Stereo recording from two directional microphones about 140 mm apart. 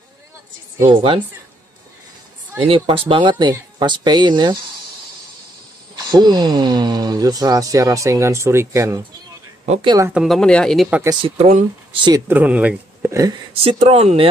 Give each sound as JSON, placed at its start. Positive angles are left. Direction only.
{"t": 0.8, "sound": "speech", "side_deg": -40}
{"t": 2.6, "sound": "speech", "side_deg": -40}
{"t": 6.0, "sound": "speech", "side_deg": -30}
{"t": 9.7, "sound": "speech", "side_deg": -40}
{"t": 10.1, "sound": "speech", "side_deg": 0}
{"t": 11.2, "sound": "speech", "side_deg": -50}
{"t": 12.3, "sound": "speech", "side_deg": -10}
{"t": 13.5, "sound": "speech", "side_deg": -45}